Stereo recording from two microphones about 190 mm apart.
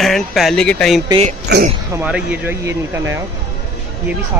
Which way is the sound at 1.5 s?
60° right (ahead or behind).